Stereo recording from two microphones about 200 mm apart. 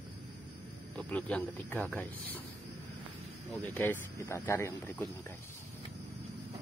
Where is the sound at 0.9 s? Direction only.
10° left (ahead or behind).